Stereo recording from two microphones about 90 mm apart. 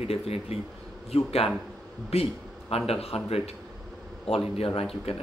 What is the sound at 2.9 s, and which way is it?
A man's voice, 90° left.